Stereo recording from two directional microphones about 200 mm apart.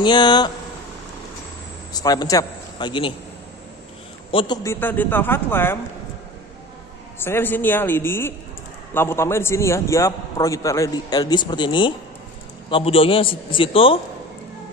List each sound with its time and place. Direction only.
0.0 s a man's voice: 20° left (ahead or behind)
2.0 s a man's voice: 20° left (ahead or behind)
4.3 s a man's voice: 25° left (ahead or behind)
4.6 s a man's voice: 10° left (ahead or behind)
7.2 s a man's voice: 10° left (ahead or behind); by 14.0 s 25° left (ahead or behind)